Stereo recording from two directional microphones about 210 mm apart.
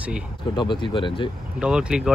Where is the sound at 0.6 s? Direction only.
20° left (ahead or behind).